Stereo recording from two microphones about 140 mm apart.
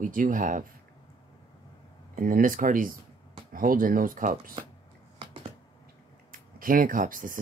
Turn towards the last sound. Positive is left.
turn(degrees=-75)  # may be behind; listen again after turning